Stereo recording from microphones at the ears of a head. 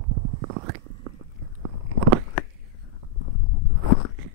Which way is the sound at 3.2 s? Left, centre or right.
Left.